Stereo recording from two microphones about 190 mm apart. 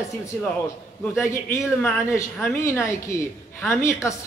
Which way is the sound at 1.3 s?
15° left (ahead or behind).